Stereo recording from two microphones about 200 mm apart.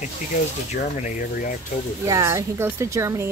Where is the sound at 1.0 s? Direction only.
45° left (ahead or behind).